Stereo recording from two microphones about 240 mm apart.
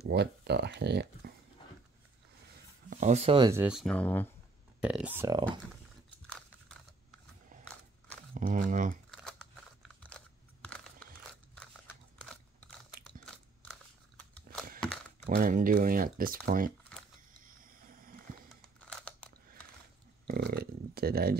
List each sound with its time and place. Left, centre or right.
0.1 s speech: right
2.9 s speech: right; by 4.3 s centre
4.7 s speech: centre
8.4 s speech: right
10.7 s crunch: centre
13.0 s biting: centre
14.8 s a sound: centre
15.2 s speech: right
17.5 s a sound: right
18.9 s biting: centre
20.2 s speech: right